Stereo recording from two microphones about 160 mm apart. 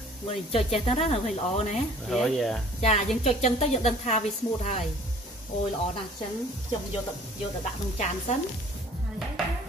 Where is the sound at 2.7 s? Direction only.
45° left (ahead or behind).